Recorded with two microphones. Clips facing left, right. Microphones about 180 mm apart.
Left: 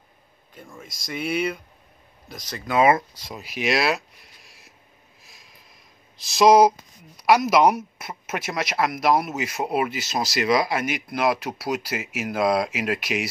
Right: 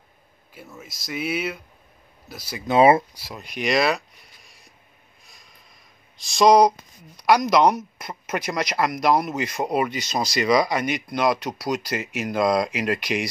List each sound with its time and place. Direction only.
0.6 s speech: 5° right (ahead or behind)
2.6 s speech: 25° right (ahead or behind)
3.1 s speech: 10° right (ahead or behind)
3.3 s speech: 5° left (ahead or behind)
5.2 s vehicle: centre (ahead or behind)
6.1 s speech: centre (ahead or behind)